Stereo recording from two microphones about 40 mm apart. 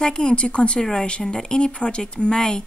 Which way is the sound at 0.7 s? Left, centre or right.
Centre.